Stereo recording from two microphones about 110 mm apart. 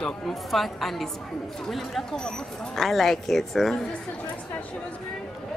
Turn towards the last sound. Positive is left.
turn(degrees=0)  # may be behind; listen again after turning